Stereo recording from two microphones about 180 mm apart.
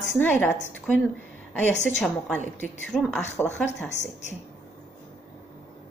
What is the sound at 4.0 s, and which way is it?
Speech, 40° left (ahead or behind).